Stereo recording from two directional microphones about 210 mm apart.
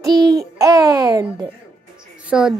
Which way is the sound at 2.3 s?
5° right (ahead or behind).